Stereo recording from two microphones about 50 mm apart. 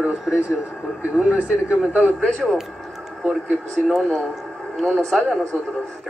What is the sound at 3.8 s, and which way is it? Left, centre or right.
Speech, centre.